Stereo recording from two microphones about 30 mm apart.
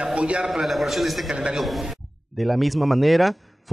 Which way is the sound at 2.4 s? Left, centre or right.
Centre.